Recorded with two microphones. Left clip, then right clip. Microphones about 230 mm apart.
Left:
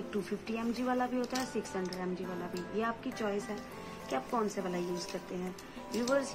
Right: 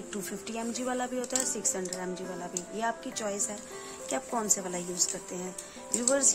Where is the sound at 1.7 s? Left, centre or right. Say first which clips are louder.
Right 2 dB; right.